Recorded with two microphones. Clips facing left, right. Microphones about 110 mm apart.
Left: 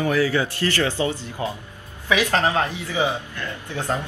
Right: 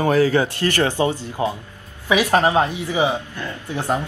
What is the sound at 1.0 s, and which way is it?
Speech, 30° right (ahead or behind).